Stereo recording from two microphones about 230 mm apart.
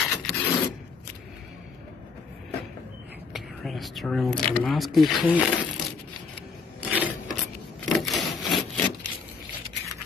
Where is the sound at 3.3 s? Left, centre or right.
Centre.